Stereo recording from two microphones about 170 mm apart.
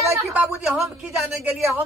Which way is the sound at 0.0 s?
15° right (ahead or behind).